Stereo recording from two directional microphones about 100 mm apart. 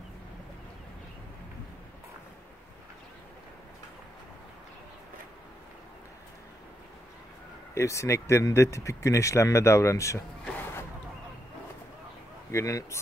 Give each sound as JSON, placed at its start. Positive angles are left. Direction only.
{"t": 7.7, "sound": "speech", "side_deg": 30}
{"t": 10.6, "sound": "a sound", "side_deg": 25}
{"t": 12.4, "sound": "speech", "side_deg": 30}